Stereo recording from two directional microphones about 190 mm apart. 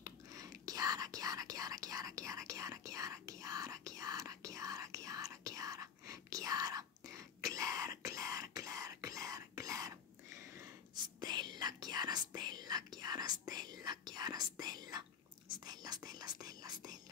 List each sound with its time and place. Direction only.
0.0 s whispering: 20° right (ahead or behind)